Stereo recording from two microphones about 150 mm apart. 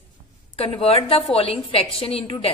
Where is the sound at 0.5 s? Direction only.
40° left (ahead or behind).